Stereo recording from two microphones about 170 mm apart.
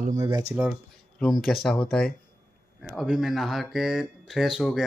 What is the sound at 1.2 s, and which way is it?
Speech, centre (ahead or behind).